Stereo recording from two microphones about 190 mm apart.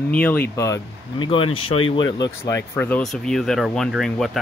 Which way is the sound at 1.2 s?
30° left (ahead or behind).